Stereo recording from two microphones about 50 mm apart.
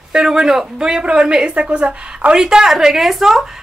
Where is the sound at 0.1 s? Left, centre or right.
Centre.